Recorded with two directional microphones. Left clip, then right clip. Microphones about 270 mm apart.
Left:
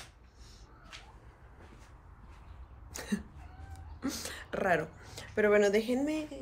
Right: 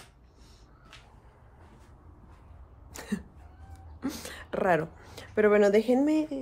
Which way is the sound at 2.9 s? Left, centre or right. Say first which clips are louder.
Right 1 dB; centre.